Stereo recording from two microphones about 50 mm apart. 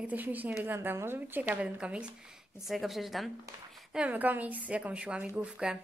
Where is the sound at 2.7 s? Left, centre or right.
Centre.